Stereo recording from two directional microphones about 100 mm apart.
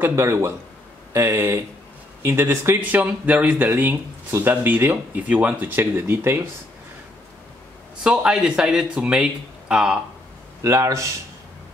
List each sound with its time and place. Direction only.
0.0 s speech: 25° right (ahead or behind)
8.0 s speech: 10° right (ahead or behind)
10.6 s speech: 30° right (ahead or behind)